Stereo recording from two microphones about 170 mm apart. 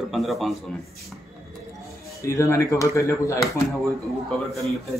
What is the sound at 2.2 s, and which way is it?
A man's voice, 15° left (ahead or behind).